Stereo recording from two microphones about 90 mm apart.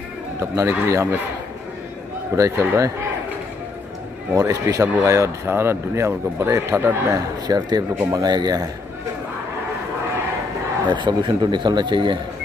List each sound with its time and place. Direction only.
0.4 s speech: 30° right (ahead or behind)
2.3 s speech: 30° right (ahead or behind)
4.3 s speech: 40° right (ahead or behind)
7.4 s speech: 50° right (ahead or behind)
10.9 s a man's voice: 55° right (ahead or behind)